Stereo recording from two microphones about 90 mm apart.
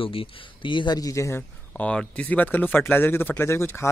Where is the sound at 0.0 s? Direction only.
85° left; by 0.9 s 60° left (ahead or behind).